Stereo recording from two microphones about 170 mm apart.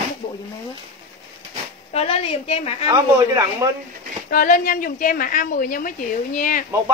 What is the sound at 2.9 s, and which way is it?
Speech, 20° right (ahead or behind).